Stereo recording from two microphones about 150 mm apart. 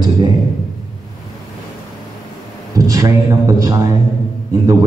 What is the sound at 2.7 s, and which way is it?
A man's voice, 20° right (ahead or behind).